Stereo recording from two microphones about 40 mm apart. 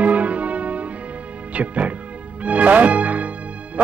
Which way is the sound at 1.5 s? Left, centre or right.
Right.